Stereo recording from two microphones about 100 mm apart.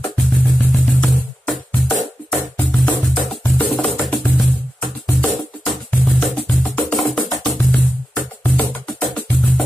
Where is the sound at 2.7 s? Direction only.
5° left (ahead or behind).